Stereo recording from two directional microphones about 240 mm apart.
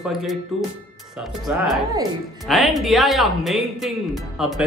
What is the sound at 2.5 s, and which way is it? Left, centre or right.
Speech, centre.